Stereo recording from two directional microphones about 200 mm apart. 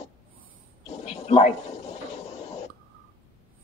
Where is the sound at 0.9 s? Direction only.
35° left (ahead or behind).